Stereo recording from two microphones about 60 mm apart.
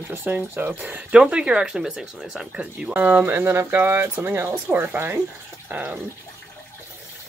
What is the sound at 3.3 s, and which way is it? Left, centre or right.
Speech, right.